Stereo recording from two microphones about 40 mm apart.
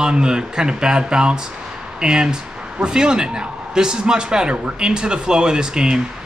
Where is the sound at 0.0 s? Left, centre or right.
Right.